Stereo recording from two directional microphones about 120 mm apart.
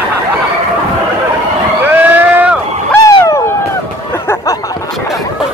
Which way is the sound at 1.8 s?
15° right (ahead or behind).